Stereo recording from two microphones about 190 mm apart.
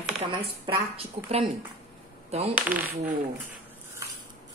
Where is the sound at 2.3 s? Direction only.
35° right (ahead or behind).